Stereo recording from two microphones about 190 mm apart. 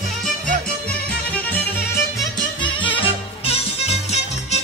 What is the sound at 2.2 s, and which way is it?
Music, 25° left (ahead or behind).